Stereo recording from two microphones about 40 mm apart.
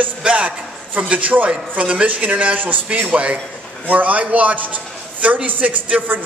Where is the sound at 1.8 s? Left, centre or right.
Right.